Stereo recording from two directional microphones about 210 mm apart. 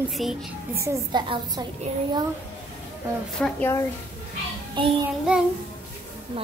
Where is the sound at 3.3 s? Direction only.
5° left (ahead or behind).